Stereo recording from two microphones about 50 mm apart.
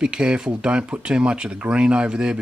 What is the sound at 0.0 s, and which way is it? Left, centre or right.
Speech, centre.